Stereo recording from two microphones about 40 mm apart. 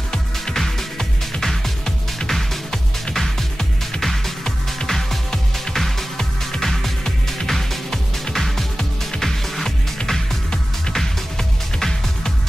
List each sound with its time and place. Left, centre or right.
0.6 s music: centre